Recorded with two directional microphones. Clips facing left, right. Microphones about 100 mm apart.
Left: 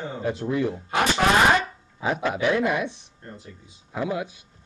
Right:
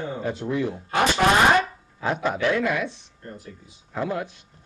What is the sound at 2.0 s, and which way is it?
Speech, centre (ahead or behind).